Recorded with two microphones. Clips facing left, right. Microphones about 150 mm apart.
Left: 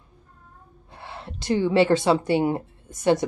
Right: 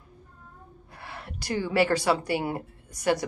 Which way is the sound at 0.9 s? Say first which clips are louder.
Left 3 dB; 25° left (ahead or behind).